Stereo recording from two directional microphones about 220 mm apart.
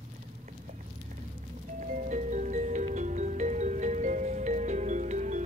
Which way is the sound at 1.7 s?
35° right (ahead or behind).